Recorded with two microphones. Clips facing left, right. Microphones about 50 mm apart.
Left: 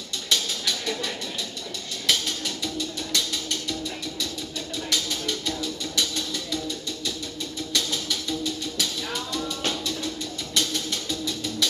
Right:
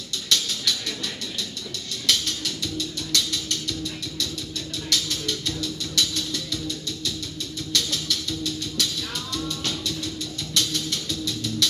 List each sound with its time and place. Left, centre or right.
0.3 s a sound: centre
2.0 s music: centre
4.8 s music: centre
7.7 s music: centre
10.5 s music: centre